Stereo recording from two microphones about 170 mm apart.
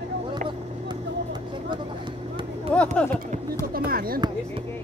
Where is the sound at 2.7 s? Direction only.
5° left (ahead or behind).